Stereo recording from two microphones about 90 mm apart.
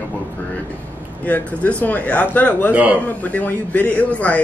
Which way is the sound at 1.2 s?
15° left (ahead or behind).